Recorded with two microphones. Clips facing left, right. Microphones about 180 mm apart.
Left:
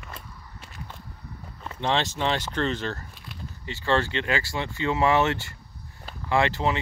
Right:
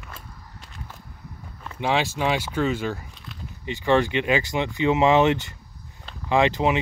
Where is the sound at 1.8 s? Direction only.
10° right (ahead or behind).